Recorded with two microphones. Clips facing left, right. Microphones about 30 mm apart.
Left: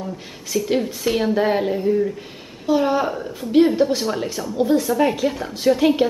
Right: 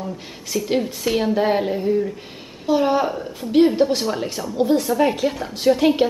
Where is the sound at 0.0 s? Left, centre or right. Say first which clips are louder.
Even; centre.